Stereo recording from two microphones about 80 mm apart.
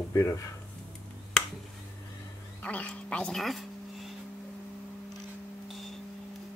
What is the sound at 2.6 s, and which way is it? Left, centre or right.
Speech, centre.